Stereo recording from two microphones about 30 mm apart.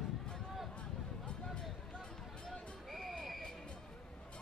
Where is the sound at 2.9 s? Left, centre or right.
Centre.